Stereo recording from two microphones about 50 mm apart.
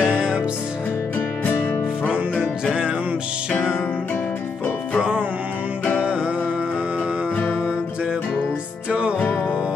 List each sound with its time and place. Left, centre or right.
0.0 s music: right
2.6 s music: right
6.0 s music: right